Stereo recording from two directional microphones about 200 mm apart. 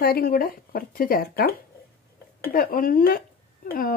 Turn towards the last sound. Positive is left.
turn(degrees=45)  # may be behind; listen again after turning